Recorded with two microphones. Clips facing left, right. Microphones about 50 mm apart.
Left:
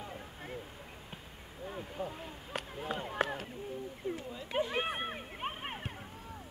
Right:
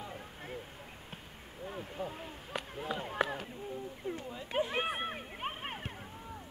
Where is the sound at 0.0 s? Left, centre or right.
Centre.